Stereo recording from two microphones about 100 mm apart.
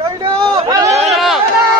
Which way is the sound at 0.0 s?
60° right (ahead or behind).